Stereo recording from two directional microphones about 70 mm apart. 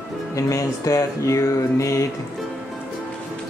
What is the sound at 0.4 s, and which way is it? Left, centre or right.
Speech, left.